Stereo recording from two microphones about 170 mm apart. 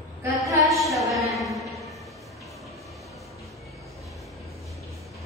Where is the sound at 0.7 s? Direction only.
Centre (ahead or behind).